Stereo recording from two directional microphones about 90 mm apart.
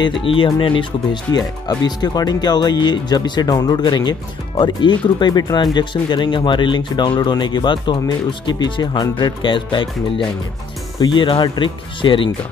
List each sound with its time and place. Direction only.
0.2 s speech: 80° left
1.3 s speech: 45° left (ahead or behind); by 12.3 s 70° left (ahead or behind)